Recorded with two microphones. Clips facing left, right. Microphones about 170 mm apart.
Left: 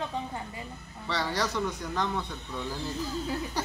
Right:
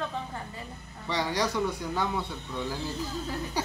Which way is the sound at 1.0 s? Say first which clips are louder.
Right 2 dB; 15° right (ahead or behind).